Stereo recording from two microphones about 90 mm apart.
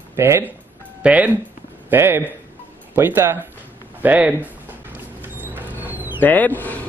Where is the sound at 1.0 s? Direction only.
15° right (ahead or behind).